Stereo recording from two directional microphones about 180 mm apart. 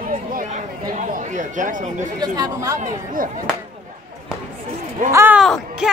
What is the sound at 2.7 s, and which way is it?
Speech, 50° right (ahead or behind).